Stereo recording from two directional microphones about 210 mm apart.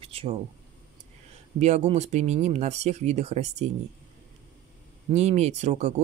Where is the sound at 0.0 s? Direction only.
25° right (ahead or behind).